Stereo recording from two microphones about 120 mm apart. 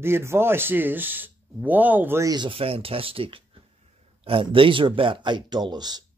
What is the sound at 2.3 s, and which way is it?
Speech, 40° right (ahead or behind).